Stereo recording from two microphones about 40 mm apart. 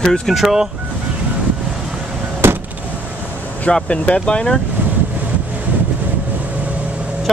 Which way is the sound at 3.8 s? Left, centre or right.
Left.